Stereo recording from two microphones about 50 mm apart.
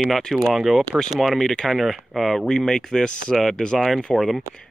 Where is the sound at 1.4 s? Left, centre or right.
Centre.